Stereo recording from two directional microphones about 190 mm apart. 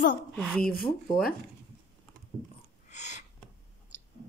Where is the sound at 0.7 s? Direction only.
50° left (ahead or behind).